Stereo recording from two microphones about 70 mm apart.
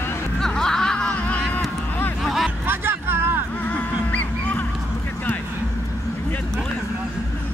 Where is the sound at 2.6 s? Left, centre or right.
Right.